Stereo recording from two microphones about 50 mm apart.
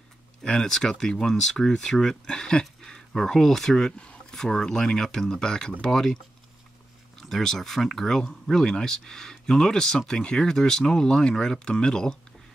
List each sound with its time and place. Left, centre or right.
0.4 s speech: centre
2.6 s a sound: centre
3.2 s speech: centre
7.2 s speech: centre